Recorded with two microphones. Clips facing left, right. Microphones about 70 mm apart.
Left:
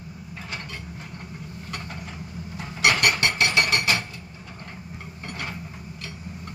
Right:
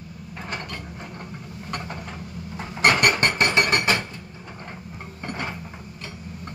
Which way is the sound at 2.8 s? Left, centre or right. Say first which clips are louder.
Right 2 dB; right.